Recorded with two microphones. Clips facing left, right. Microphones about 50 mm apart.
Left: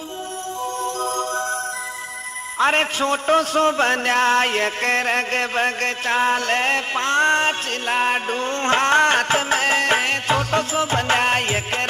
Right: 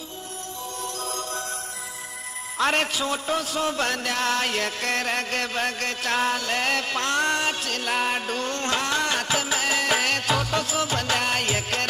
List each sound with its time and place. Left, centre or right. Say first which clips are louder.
0.8 s music: left 7 dB; left
2.6 s music: left 5 dB; left
3.0 s a man's voice: left 8 dB; left
3.7 s music: left 7 dB; left